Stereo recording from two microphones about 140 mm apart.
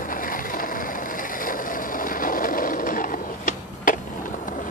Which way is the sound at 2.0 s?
80° left.